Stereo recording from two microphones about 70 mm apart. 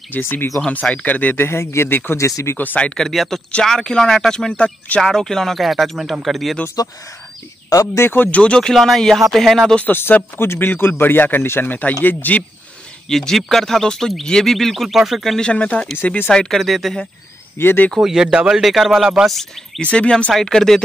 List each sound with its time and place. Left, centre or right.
0.1 s speech: left
0.7 s speech: left
2.1 s speech: left
2.5 s speech: left
2.9 s speech: centre
7.9 s speech: left
8.3 s speech: centre
9.8 s speech: left
13.1 s speech: centre
15.3 s speech: centre
16.3 s speech: centre
17.6 s speech: left
17.9 s speech: centre
19.8 s speech: centre